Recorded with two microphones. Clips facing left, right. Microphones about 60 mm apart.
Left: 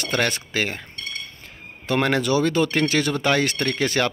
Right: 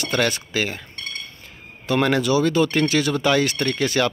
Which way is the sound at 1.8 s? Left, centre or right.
Left.